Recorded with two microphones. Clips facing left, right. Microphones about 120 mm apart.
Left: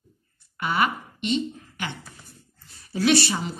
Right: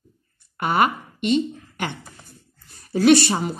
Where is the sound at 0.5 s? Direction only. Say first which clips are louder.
Right 4 dB; 50° right (ahead or behind).